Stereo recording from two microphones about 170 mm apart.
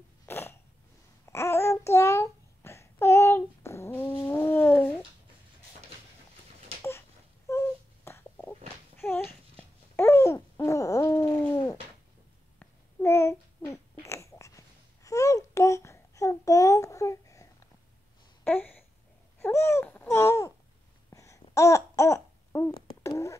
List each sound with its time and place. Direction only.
0.3 s cough: 15° left (ahead or behind)
1.3 s babbling: 15° left (ahead or behind)
4.3 s cat: 10° left (ahead or behind)
6.8 s wail: 15° left (ahead or behind)
11.5 s bird: 20° left (ahead or behind)
12.5 s babbling: 15° left (ahead or behind)
18.4 s a sound: 10° left (ahead or behind)
19.4 s babbling: 15° left (ahead or behind)
23.0 s beatboxing: 20° left (ahead or behind)